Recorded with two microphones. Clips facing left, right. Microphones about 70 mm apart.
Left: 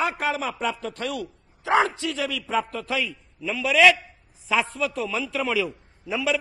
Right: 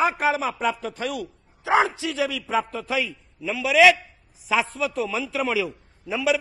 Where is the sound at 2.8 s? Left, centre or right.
Centre.